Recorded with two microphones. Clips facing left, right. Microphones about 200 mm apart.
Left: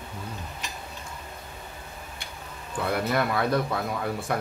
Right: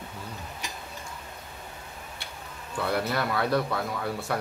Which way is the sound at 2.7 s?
20° left (ahead or behind).